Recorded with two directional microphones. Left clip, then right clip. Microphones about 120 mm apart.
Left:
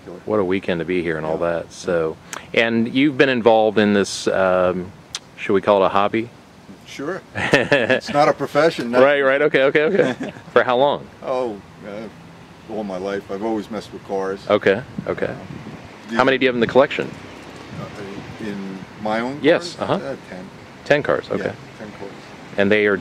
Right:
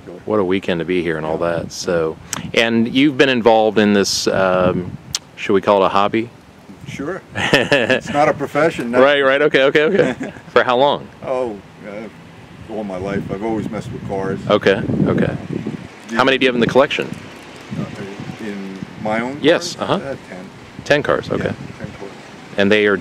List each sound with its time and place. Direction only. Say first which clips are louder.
0.3 s speech: right 2 dB; 25° right (ahead or behind)
7.0 s speech: right 1 dB; 5° right (ahead or behind)
7.3 s speech: right 2 dB; 25° right (ahead or behind)
8.0 s speech: right 1 dB; 5° right (ahead or behind)
9.0 s speech: right 2 dB; 25° right (ahead or behind)
11.2 s speech: right 2 dB; 5° right (ahead or behind)
14.5 s speech: right 3 dB; 25° right (ahead or behind)
19.0 s speech: right 2 dB; 5° right (ahead or behind)
19.4 s speech: right 2 dB; 25° right (ahead or behind)
22.6 s speech: right 2 dB; 25° right (ahead or behind)